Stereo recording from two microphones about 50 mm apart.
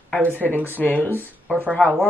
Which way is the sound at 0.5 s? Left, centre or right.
Right.